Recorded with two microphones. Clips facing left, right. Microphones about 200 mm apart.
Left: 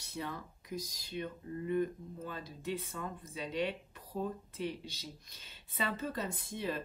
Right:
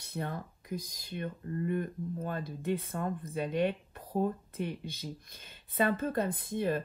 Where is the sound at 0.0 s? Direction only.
55° right (ahead or behind).